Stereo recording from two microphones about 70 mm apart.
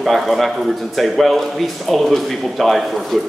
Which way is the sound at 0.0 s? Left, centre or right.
Centre.